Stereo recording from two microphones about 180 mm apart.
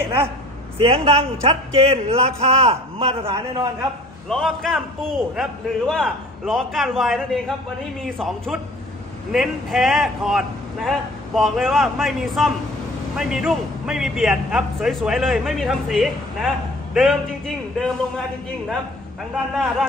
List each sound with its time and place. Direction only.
0.0 s speech: 15° right (ahead or behind)
0.7 s a man's voice: 30° right (ahead or behind)
4.3 s a man's voice: centre (ahead or behind)
19.3 s a man's voice: centre (ahead or behind)